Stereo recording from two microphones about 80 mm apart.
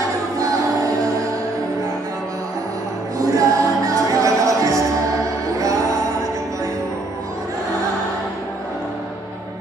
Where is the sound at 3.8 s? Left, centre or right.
Right.